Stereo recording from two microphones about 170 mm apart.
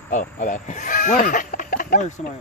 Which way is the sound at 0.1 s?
50° left (ahead or behind).